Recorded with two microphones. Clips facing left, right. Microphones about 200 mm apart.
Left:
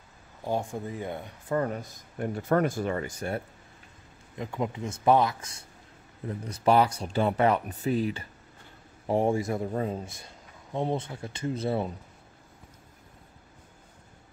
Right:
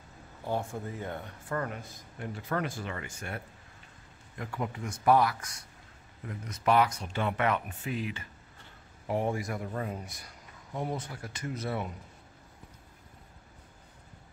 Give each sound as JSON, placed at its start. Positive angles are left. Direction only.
{"t": 0.4, "sound": "speech", "side_deg": 15}
{"t": 1.6, "sound": "speech", "side_deg": 40}
{"t": 4.4, "sound": "speech", "side_deg": 20}